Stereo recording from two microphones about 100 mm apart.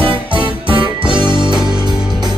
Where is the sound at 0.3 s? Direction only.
55° right (ahead or behind).